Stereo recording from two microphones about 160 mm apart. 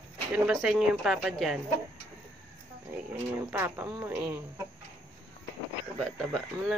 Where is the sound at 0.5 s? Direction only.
5° right (ahead or behind).